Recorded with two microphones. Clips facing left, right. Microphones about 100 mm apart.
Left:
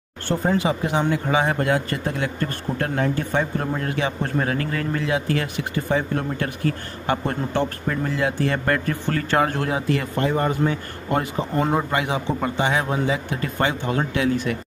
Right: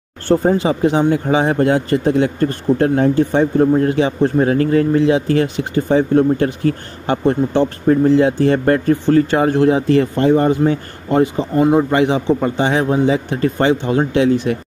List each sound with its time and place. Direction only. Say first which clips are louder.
0.3 s a man's voice: right 7 dB; 35° right (ahead or behind)